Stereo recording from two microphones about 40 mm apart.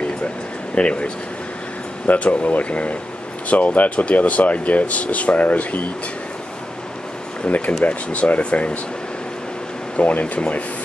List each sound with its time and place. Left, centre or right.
0.7 s speech: left
7.4 s speech: left
9.9 s speech: left